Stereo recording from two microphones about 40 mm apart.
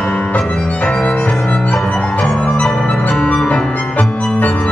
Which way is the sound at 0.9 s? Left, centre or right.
Left.